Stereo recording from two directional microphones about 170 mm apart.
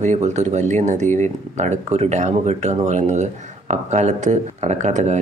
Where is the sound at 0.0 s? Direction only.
40° right (ahead or behind).